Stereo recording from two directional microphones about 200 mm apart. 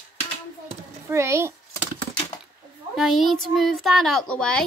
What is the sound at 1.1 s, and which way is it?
Speech, 15° right (ahead or behind).